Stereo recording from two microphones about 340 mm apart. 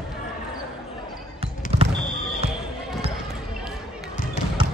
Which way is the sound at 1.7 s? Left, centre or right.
Centre.